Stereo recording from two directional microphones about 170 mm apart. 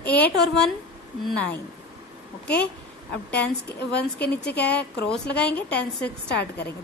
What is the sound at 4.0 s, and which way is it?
Speech, 75° left (ahead or behind).